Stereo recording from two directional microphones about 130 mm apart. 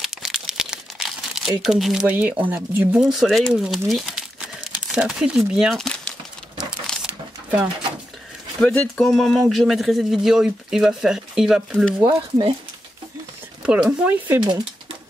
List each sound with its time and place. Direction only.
0.0 s crumpling: centre (ahead or behind)
1.6 s speech: 5° right (ahead or behind)
6.9 s a sound: 5° left (ahead or behind)
8.5 s speech: 10° left (ahead or behind)
12.1 s speech: 40° right (ahead or behind)
13.6 s speech: 10° right (ahead or behind)